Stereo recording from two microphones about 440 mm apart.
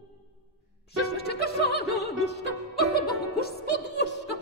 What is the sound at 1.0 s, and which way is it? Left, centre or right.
Music, left.